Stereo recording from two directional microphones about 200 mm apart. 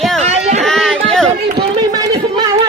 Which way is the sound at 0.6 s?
Centre (ahead or behind).